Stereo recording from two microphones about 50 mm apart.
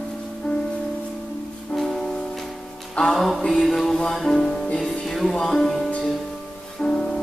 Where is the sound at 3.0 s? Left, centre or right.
Centre.